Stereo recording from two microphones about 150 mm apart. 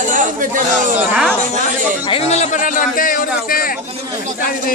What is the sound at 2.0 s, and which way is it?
A man's voice, 40° left (ahead or behind).